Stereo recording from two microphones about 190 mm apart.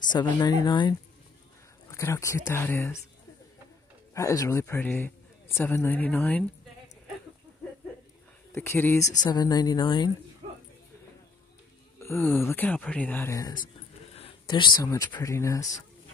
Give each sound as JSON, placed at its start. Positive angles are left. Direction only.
{"t": 0.1, "sound": "speech", "side_deg": 20}
{"t": 4.1, "sound": "speech", "side_deg": 15}
{"t": 8.5, "sound": "speech", "side_deg": 10}
{"t": 10.4, "sound": "a sound", "side_deg": -35}
{"t": 12.0, "sound": "speech", "side_deg": 10}